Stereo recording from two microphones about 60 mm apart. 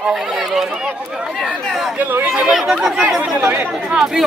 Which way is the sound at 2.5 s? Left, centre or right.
Centre.